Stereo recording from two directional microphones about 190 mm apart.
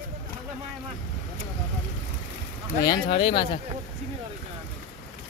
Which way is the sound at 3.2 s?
25° left (ahead or behind).